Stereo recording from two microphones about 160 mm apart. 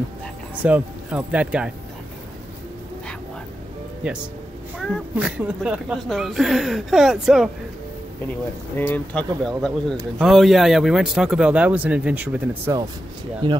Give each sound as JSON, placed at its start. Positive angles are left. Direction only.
{"t": 0.6, "sound": "speech", "side_deg": -10}
{"t": 4.0, "sound": "a woman's voice", "side_deg": -5}
{"t": 8.7, "sound": "a woman's voice", "side_deg": 10}
{"t": 13.4, "sound": "speech", "side_deg": -30}